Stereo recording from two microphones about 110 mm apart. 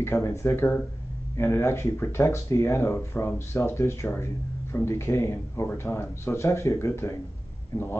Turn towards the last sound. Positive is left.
turn(degrees=20)  # may be behind; listen again after turning